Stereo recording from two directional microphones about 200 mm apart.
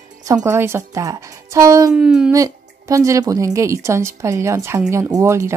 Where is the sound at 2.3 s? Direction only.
15° right (ahead or behind).